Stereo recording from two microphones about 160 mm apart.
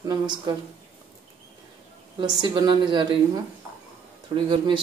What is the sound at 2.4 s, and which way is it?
Speech, 30° right (ahead or behind).